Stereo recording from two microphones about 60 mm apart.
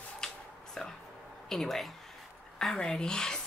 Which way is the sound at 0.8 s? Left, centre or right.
Centre.